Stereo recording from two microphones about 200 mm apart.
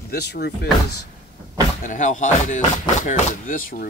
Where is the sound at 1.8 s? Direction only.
40° left (ahead or behind).